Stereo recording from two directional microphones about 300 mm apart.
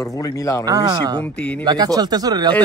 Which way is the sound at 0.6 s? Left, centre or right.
Centre.